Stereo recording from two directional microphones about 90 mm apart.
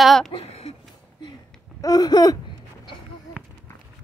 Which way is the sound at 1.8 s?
45° left (ahead or behind).